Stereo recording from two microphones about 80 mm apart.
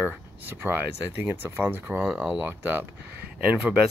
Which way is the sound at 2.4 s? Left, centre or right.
Right.